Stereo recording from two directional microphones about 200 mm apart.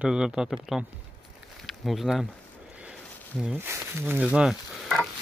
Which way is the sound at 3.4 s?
10° right (ahead or behind).